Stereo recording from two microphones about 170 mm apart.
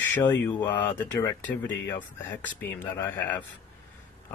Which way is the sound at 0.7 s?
25° left (ahead or behind).